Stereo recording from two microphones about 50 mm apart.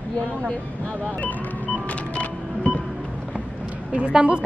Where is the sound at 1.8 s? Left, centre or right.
Left.